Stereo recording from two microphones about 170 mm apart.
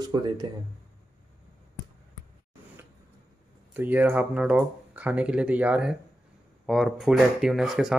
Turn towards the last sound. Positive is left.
turn(degrees=0)  # may be behind; listen again after turning